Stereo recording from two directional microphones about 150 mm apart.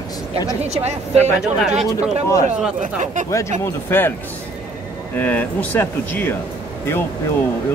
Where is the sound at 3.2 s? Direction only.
20° left (ahead or behind).